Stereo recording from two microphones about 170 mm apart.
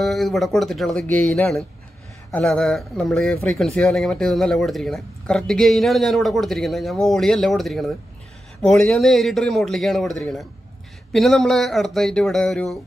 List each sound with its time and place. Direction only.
0.0 s speech: centre (ahead or behind)